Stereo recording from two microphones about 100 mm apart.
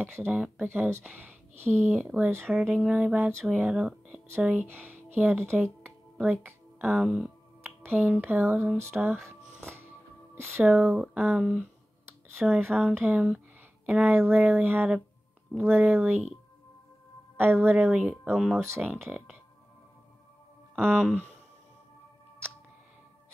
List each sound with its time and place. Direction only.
0.0 s speech: 20° right (ahead or behind)
0.7 s speech: 25° right (ahead or behind)
1.9 s speech: 10° right (ahead or behind)
2.6 s speech: 10° right (ahead or behind)
17.4 s speech: 20° right (ahead or behind); by 18.6 s 5° right (ahead or behind)
18.9 s speech: 25° right (ahead or behind)
20.8 s speech: 20° right (ahead or behind)